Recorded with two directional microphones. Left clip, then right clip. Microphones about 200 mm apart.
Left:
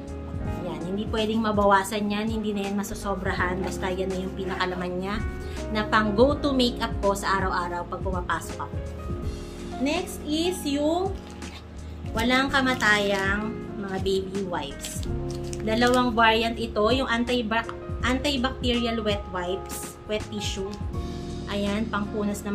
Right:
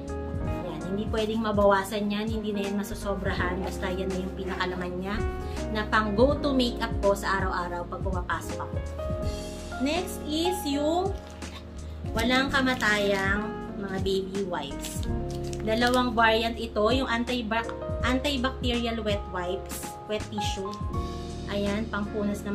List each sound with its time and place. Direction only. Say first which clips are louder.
0.9 s a woman's voice: left 2 dB; 15° left (ahead or behind)
9.8 s a woman's voice: left 2 dB; 10° left (ahead or behind)
12.2 s a woman's voice: left 2 dB; 15° left (ahead or behind)
15.6 s a woman's voice: left 3 dB; 10° left (ahead or behind)